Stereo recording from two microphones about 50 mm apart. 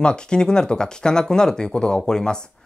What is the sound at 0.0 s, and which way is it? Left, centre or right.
Speech, centre.